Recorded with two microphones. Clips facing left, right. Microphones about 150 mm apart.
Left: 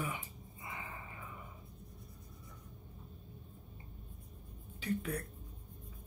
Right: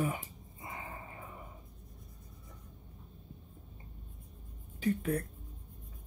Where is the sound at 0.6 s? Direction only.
40° right (ahead or behind).